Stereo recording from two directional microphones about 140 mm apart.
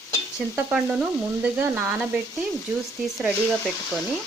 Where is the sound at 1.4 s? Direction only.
15° right (ahead or behind).